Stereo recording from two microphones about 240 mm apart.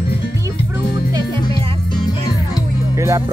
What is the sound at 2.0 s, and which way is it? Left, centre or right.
Music, centre.